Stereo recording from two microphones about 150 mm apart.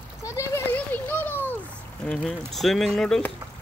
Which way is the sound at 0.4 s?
15° left (ahead or behind).